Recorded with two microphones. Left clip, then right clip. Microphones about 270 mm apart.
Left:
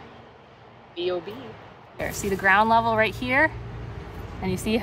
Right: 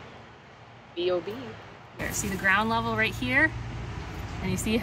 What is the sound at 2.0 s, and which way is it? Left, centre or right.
A woman's voice, centre.